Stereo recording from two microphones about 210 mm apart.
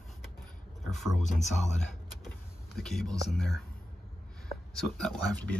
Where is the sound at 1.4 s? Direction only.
35° left (ahead or behind).